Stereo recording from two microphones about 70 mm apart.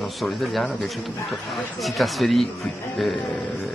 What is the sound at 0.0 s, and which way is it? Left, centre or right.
Speech, centre.